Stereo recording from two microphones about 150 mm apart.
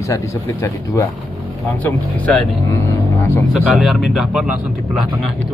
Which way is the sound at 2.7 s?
15° left (ahead or behind).